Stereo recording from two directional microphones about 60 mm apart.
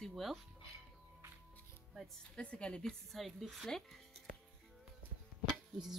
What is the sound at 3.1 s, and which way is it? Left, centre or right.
Speech, centre.